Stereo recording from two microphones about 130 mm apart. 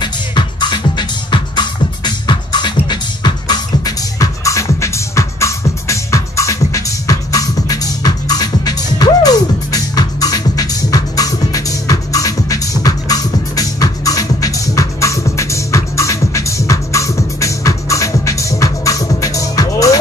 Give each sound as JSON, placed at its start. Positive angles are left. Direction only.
{"t": 0.0, "sound": "music", "side_deg": 35}